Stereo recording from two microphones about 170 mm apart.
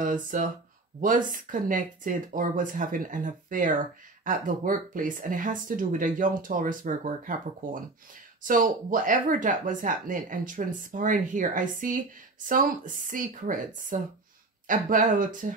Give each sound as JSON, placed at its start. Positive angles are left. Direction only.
{"t": 0.0, "sound": "speech", "side_deg": -50}